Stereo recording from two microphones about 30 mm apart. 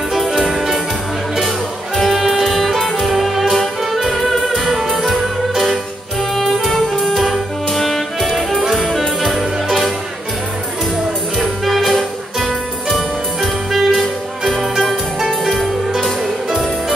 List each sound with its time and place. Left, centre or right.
0.5 s music: centre
2.0 s music: centre
6.3 s music: centre
9.7 s music: centre
11.6 s music: centre
15.1 s music: centre